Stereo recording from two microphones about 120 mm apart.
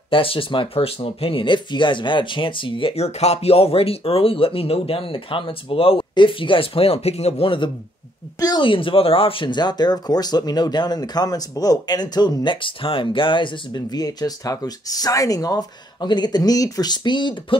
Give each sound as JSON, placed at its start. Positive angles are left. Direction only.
{"t": 0.1, "sound": "speech", "side_deg": 50}